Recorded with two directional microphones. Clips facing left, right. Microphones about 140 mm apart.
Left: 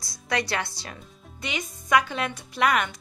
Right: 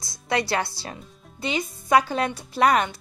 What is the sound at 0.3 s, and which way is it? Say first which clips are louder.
Speech: right 3 dB; 30° right (ahead or behind).